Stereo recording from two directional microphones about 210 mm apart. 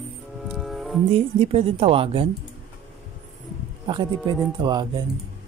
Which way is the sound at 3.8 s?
20° right (ahead or behind).